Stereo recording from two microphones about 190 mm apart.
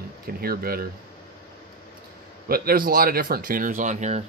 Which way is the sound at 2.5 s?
50° right (ahead or behind).